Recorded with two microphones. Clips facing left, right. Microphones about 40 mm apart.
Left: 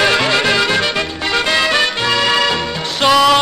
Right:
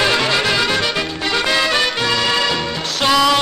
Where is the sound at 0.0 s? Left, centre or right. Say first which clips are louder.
Left 3 dB; centre.